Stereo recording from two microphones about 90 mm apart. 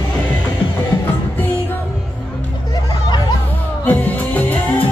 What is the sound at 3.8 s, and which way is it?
Music, 15° left (ahead or behind).